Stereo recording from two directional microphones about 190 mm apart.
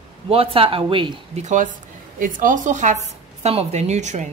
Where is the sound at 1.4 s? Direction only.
40° right (ahead or behind).